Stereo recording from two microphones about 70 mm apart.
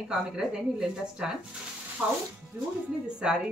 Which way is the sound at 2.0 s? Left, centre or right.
Right.